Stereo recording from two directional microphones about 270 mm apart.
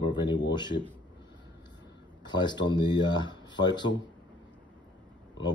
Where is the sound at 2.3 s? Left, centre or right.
Centre.